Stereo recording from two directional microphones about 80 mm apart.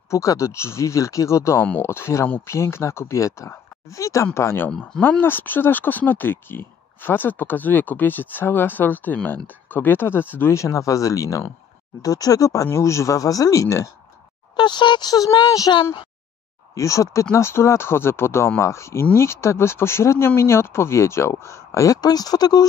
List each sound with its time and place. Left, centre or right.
0.1 s speech: left
5.0 s speech: left
10.5 s speech: left
14.6 s speech: left
16.7 s speech: left
21.9 s speech: left